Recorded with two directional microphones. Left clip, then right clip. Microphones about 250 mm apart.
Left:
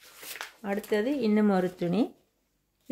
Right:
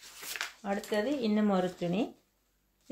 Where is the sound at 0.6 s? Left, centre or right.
Left.